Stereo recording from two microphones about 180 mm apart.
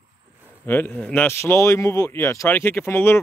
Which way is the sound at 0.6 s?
10° left (ahead or behind).